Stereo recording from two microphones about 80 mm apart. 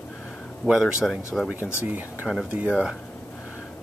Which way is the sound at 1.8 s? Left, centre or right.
Right.